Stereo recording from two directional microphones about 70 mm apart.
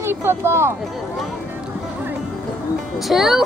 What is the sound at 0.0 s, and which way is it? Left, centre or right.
Speech, right.